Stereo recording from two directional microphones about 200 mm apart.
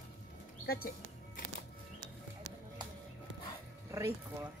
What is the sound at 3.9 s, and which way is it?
Speech, 10° right (ahead or behind).